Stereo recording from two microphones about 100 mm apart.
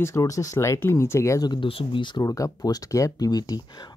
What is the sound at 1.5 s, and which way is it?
Speech, 60° left (ahead or behind).